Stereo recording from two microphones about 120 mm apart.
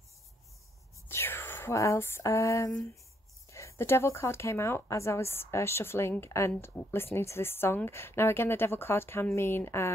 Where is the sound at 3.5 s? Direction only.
25° left (ahead or behind).